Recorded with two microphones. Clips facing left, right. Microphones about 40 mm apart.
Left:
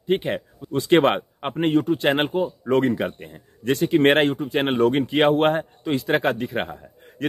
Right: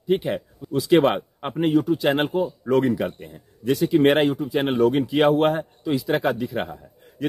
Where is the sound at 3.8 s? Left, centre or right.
Left.